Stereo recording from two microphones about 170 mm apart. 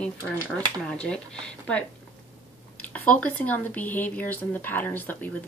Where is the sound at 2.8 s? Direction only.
10° left (ahead or behind).